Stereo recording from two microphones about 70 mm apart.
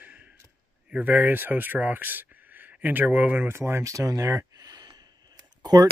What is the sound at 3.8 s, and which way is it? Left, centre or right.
Speech, right.